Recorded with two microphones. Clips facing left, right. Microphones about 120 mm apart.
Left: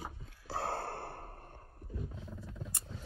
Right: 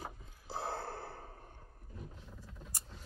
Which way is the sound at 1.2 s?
55° left (ahead or behind).